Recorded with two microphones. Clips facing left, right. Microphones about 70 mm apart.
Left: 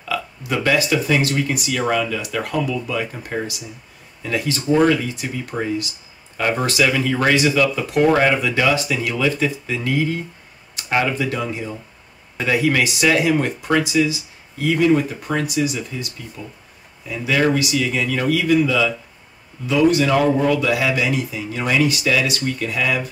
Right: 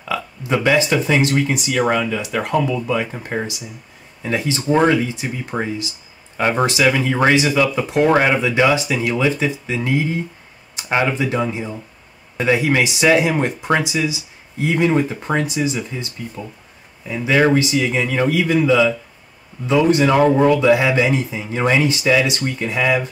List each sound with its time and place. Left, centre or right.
0.1 s speech: right
17.1 s speech: right